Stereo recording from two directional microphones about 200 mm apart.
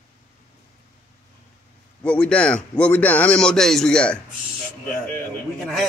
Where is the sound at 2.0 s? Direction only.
5° left (ahead or behind).